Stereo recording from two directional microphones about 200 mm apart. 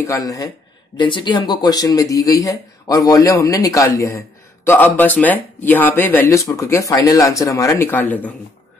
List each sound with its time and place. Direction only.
0.0 s speech: 15° left (ahead or behind)